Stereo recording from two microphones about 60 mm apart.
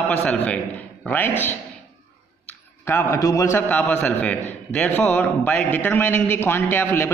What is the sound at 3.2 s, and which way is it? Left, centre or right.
Speech, left.